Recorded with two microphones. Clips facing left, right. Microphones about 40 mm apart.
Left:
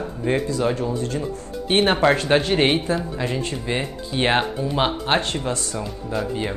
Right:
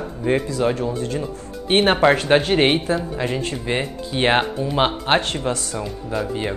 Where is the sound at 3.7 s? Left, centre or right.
Right.